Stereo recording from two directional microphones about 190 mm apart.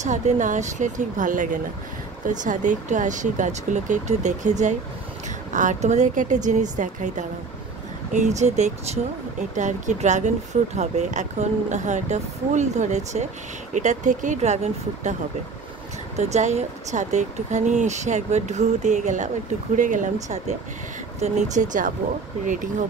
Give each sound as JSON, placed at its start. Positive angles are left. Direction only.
{"t": 0.0, "sound": "speech", "side_deg": -40}
{"t": 16.2, "sound": "speech", "side_deg": -35}
{"t": 21.2, "sound": "speech", "side_deg": -40}